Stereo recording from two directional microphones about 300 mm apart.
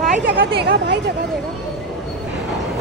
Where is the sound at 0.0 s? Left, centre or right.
Right.